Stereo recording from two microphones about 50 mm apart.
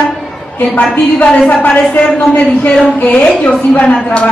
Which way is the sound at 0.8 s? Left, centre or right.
Left.